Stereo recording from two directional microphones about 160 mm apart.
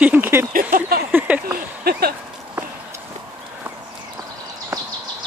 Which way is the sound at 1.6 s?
70° right (ahead or behind).